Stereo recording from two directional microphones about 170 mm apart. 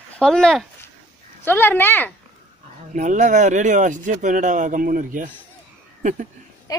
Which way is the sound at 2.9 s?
45° right (ahead or behind).